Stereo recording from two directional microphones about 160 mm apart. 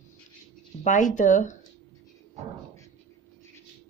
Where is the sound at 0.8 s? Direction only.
50° left (ahead or behind).